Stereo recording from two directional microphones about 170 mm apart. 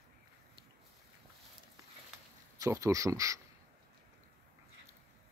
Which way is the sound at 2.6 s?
20° right (ahead or behind).